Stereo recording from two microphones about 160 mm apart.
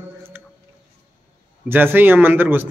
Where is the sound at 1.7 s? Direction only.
10° right (ahead or behind).